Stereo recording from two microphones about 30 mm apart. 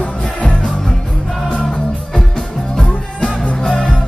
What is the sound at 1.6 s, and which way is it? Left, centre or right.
Music, centre.